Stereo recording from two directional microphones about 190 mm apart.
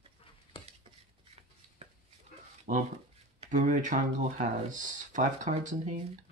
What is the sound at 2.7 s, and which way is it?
Speech, 45° right (ahead or behind).